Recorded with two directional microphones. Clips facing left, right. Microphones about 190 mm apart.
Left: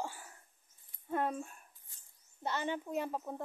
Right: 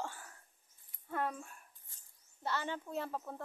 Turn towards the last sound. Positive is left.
turn(degrees=15)  # may be behind; listen again after turning